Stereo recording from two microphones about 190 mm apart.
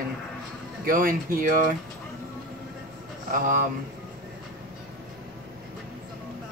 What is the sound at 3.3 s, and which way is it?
Speech, 45° right (ahead or behind).